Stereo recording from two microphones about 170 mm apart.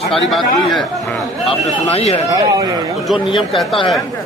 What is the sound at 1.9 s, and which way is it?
Speech, 35° left (ahead or behind).